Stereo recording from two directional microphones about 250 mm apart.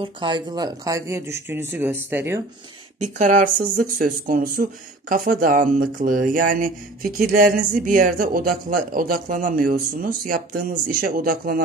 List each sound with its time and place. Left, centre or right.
0.0 s speech: centre
3.0 s speech: right